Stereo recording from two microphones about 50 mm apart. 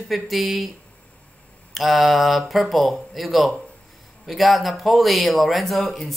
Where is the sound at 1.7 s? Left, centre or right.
Centre.